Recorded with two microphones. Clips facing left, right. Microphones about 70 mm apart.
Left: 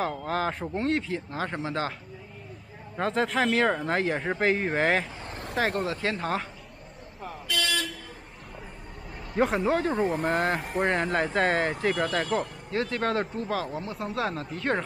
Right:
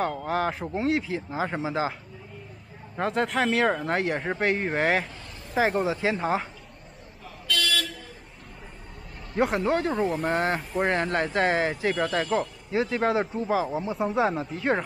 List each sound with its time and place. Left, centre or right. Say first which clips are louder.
0.0 s speech: right 2 dB; centre
3.0 s speech: even; centre
7.4 s vehicle: right 2 dB; left
9.4 s speech: even; centre